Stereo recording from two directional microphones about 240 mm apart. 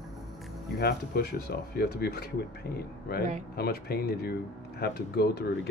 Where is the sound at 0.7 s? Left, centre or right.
Left.